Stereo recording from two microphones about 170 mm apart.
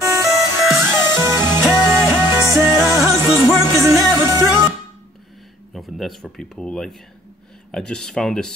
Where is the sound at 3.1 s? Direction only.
20° left (ahead or behind).